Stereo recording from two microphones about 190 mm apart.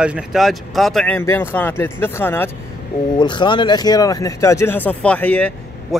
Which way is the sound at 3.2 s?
25° left (ahead or behind).